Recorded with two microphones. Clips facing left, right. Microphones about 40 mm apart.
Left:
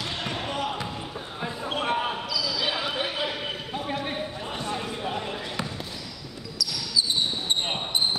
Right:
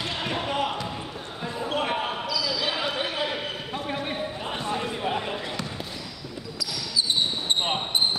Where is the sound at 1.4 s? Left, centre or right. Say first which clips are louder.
Right 1 dB; centre.